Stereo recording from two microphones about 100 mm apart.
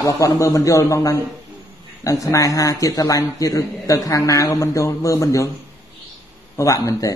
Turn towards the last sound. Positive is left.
turn(degrees=35)  # may be behind; listen again after turning